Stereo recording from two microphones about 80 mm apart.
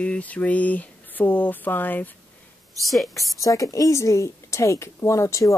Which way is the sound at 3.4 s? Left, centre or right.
Left.